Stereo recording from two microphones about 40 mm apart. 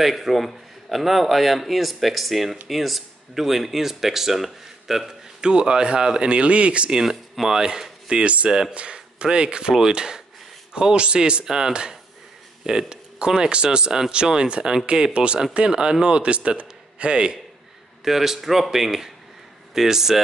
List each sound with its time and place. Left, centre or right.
0.0 s a man's voice: centre
5.4 s speech: right
6.9 s speech: centre
8.1 s speech: right
16.2 s a man's voice: right
18.0 s speech: centre